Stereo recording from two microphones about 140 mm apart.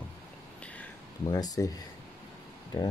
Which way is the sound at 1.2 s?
30° left (ahead or behind).